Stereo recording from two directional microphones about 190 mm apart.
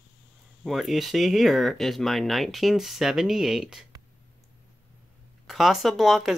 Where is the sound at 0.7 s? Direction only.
Centre (ahead or behind).